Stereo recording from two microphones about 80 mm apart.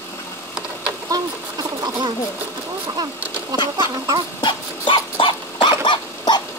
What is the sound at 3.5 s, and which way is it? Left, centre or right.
Speech, right.